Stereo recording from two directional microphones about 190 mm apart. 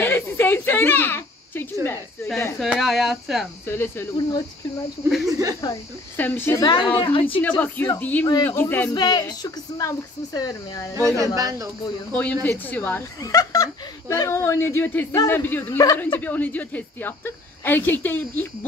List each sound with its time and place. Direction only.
0.0 s a sound: 10° left (ahead or behind)
2.2 s speech: 10° left (ahead or behind)
2.6 s speech: centre (ahead or behind)
3.6 s speech: 10° left (ahead or behind)
5.6 s speech: 15° left (ahead or behind); by 7.4 s 30° left (ahead or behind)
7.4 s speech: 10° left (ahead or behind)
8.9 s speech: 20° left (ahead or behind)
11.0 s speech: 15° right (ahead or behind)
12.1 s speech: 5° left (ahead or behind)